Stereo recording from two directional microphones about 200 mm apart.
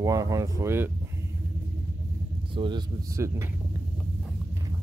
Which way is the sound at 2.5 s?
25° right (ahead or behind).